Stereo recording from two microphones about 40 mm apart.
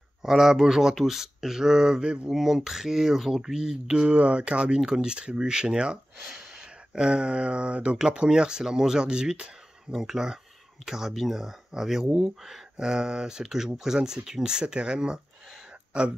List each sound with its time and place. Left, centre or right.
0.2 s speech: centre
2.3 s speech: centre
12.1 s speech: centre
12.7 s speech: centre